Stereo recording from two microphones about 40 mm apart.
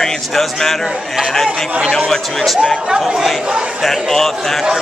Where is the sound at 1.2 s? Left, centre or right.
Centre.